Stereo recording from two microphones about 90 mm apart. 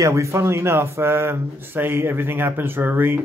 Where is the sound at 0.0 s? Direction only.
35° right (ahead or behind).